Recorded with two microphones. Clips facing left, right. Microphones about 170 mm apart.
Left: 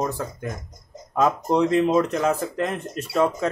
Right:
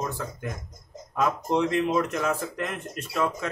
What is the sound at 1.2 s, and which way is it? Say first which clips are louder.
Speech: left 4 dB; 35° left (ahead or behind).